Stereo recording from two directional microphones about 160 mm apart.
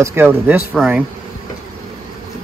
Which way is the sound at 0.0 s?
15° right (ahead or behind).